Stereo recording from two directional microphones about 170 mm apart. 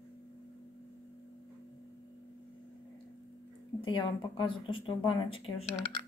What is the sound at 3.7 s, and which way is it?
A woman's voice, 30° left (ahead or behind).